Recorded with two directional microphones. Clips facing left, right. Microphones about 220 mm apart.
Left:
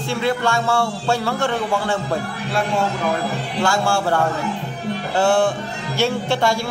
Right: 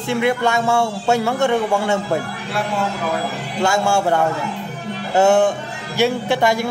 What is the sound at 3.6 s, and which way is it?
Speech, 20° right (ahead or behind).